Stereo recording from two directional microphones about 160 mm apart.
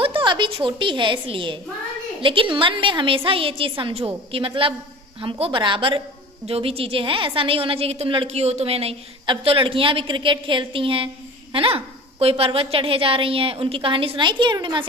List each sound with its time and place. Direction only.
0.0 s a woman's voice: 30° right (ahead or behind)